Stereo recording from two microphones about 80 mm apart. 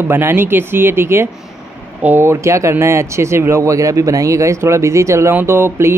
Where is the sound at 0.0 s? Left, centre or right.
Right.